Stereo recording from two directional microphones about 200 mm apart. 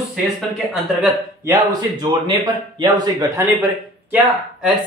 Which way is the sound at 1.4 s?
20° right (ahead or behind).